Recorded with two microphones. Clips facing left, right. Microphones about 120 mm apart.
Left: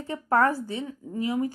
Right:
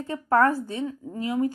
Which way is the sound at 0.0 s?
20° left (ahead or behind).